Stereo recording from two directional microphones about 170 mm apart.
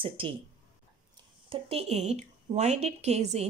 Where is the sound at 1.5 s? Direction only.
35° right (ahead or behind).